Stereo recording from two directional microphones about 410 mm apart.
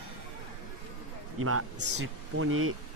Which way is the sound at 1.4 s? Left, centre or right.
Right.